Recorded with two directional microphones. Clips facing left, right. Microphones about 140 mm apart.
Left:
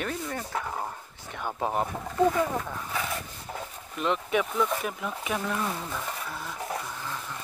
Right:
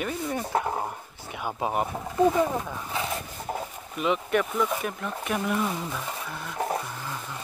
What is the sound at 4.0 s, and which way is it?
Speech, centre (ahead or behind).